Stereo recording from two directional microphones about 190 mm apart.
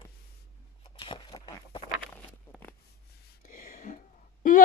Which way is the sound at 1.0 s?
25° left (ahead or behind).